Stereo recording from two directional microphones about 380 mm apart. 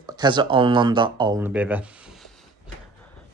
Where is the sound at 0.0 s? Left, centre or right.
Centre.